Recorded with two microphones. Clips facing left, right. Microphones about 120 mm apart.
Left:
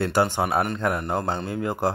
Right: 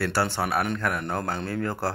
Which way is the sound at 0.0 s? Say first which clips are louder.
Left 4 dB; 20° left (ahead or behind).